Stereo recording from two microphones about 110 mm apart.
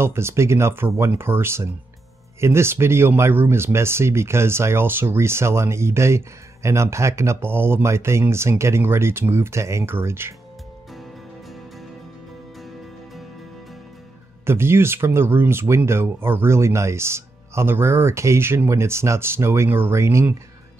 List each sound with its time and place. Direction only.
0.0 s speech: 25° right (ahead or behind)
14.4 s speech: 20° right (ahead or behind)